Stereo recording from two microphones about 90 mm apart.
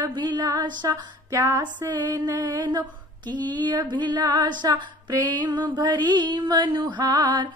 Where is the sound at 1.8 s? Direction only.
50° right (ahead or behind).